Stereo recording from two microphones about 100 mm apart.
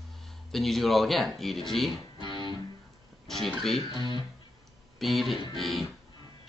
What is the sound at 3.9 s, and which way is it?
Speech, 45° right (ahead or behind).